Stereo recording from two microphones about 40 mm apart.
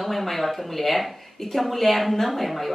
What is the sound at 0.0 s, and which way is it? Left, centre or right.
Speech, centre.